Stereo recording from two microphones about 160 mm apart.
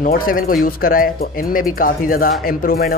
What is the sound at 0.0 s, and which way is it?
Speech, 60° left (ahead or behind).